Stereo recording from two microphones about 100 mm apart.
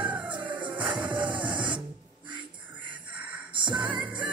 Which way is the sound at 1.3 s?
50° right (ahead or behind).